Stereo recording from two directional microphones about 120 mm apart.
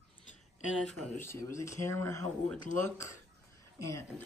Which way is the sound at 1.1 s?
20° left (ahead or behind).